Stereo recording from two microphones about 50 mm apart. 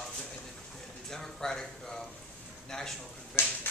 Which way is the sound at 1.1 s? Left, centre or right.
Centre.